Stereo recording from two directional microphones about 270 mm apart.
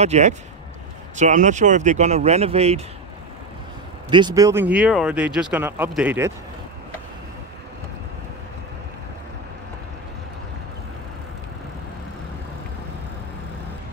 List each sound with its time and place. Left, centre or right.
0.0 s speech: right
4.1 s speech: centre